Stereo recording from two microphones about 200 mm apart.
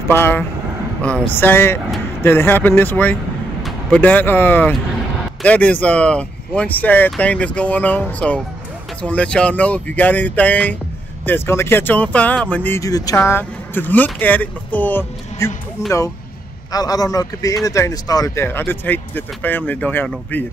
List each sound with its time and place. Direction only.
0.1 s speech: 10° left (ahead or behind)